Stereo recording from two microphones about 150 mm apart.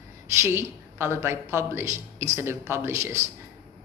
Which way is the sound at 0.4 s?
15° right (ahead or behind).